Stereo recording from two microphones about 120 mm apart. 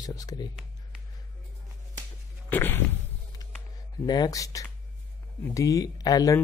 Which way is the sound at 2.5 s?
15° left (ahead or behind).